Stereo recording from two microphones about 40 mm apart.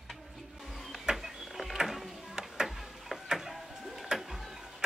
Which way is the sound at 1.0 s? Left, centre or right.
Centre.